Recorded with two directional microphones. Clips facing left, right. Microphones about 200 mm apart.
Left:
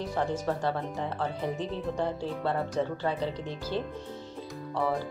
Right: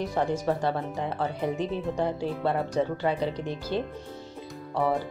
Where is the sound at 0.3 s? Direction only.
15° right (ahead or behind).